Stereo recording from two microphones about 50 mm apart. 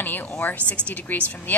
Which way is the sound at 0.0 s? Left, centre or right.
Left.